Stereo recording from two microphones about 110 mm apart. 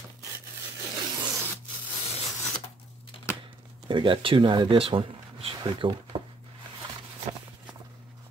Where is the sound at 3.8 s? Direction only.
50° right (ahead or behind).